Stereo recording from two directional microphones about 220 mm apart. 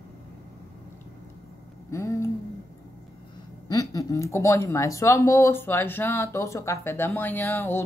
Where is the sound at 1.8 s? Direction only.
10° left (ahead or behind).